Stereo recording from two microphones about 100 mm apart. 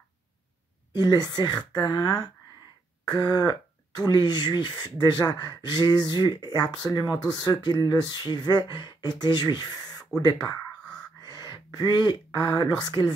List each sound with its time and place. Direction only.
0.9 s speech: 40° left (ahead or behind)